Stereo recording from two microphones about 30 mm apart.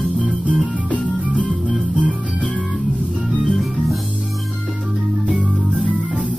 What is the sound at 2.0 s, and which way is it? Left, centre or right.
Music, right.